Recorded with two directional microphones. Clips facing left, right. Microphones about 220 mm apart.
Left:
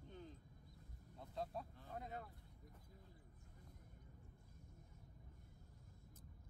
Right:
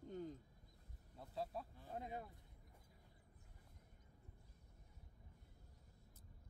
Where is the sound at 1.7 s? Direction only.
15° right (ahead or behind).